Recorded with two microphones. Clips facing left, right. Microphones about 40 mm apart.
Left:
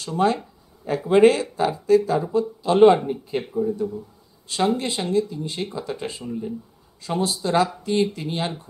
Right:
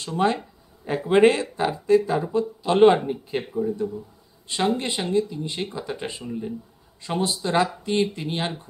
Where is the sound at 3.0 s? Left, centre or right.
Centre.